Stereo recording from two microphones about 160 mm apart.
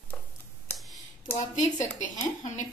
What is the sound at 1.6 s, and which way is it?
A woman's voice, 50° left (ahead or behind).